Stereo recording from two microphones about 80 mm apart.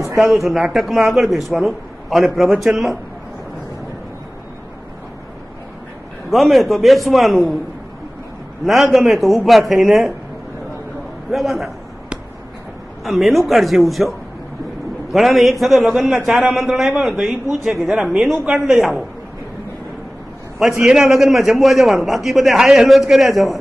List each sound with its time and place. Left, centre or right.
0.0 s a man's voice: centre
6.3 s a man's voice: centre
8.6 s a man's voice: centre
11.3 s a man's voice: centre
13.0 s a man's voice: centre
20.5 s a man's voice: centre